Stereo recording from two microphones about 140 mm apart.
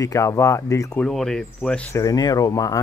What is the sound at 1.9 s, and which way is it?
Speech, 25° left (ahead or behind).